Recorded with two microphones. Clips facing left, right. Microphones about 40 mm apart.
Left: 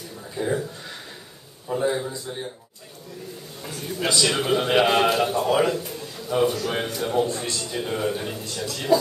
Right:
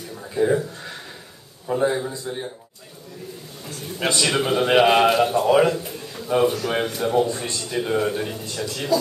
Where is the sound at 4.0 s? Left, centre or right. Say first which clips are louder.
Right 1 dB; right.